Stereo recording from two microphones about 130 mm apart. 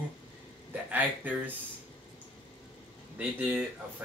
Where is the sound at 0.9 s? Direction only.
15° right (ahead or behind).